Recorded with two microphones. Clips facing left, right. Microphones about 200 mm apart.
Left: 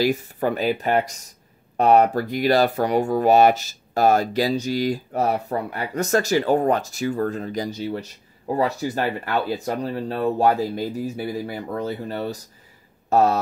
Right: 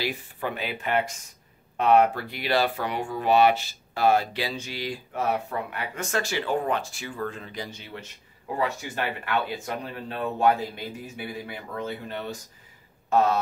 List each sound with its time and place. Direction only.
0.0 s speech: 45° left (ahead or behind)